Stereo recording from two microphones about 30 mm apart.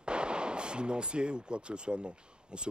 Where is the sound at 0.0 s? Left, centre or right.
Right.